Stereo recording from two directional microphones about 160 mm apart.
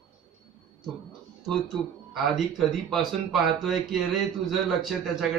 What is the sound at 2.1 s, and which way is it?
A man's voice, centre (ahead or behind).